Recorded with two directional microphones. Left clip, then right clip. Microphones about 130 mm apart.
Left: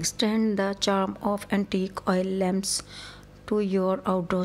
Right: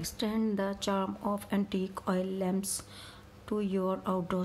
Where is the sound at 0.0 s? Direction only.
40° left (ahead or behind).